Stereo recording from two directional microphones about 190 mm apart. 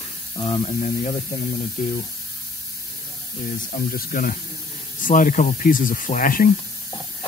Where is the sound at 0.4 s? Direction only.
30° left (ahead or behind).